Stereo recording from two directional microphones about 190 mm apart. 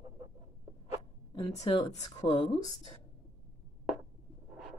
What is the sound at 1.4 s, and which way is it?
Speech, 25° left (ahead or behind).